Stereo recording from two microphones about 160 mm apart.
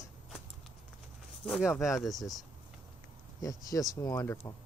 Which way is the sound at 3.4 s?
20° left (ahead or behind).